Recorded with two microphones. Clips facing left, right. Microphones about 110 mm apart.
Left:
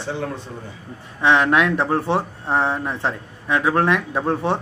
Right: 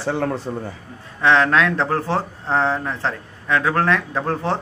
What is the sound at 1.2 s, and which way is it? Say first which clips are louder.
Speech: even; 15° left (ahead or behind).